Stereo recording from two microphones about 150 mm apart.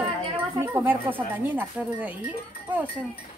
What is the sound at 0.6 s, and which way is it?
Speech, 15° right (ahead or behind).